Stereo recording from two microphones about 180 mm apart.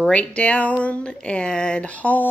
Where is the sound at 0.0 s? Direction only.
5° left (ahead or behind).